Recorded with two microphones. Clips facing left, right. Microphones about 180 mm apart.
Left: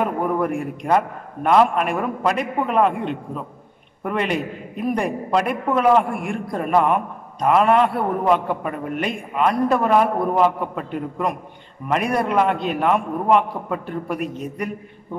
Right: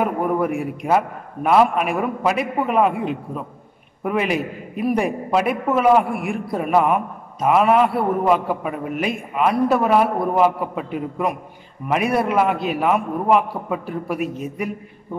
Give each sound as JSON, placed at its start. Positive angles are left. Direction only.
{"t": 0.0, "sound": "a man's voice", "side_deg": -5}